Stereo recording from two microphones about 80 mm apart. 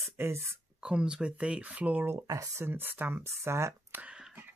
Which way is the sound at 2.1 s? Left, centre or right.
Right.